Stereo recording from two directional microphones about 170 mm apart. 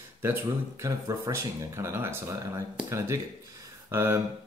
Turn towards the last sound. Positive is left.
turn(degrees=-15)  # may be behind; listen again after turning